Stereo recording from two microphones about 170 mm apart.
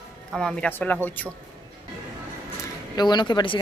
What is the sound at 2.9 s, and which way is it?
Speech, 25° left (ahead or behind).